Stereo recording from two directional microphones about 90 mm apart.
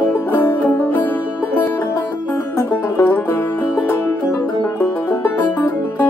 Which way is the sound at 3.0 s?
25° left (ahead or behind).